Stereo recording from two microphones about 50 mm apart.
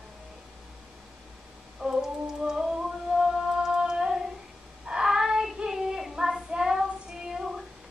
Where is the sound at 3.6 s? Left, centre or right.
Centre.